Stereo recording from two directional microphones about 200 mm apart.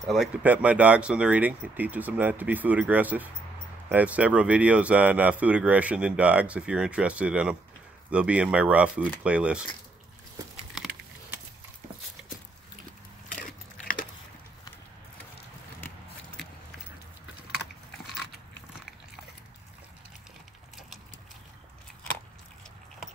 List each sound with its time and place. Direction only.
0.0 s speech: centre (ahead or behind)
10.7 s a sound: centre (ahead or behind)
13.3 s biting: 40° left (ahead or behind)